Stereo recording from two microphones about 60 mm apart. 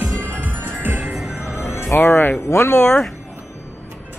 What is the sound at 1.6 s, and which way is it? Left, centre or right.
Music, left.